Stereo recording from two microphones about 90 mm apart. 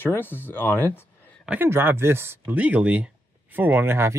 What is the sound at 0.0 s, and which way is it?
Speech, 20° left (ahead or behind).